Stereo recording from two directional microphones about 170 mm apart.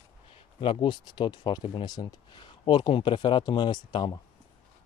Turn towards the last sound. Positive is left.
turn(degrees=25)  # may be behind; listen again after turning